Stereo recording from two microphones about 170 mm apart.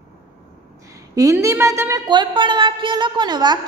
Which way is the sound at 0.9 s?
20° right (ahead or behind).